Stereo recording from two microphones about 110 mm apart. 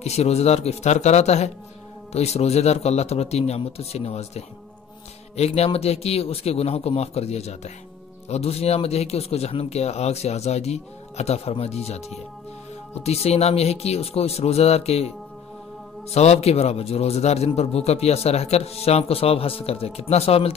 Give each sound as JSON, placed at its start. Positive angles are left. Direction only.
{"t": 0.0, "sound": "speech", "side_deg": 75}
{"t": 8.3, "sound": "speech", "side_deg": 70}